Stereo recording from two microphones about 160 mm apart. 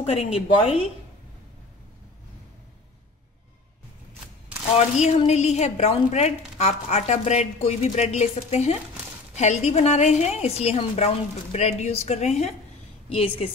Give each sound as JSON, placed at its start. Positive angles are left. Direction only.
{"t": 0.0, "sound": "a woman's voice", "side_deg": 40}
{"t": 4.7, "sound": "a woman's voice", "side_deg": 45}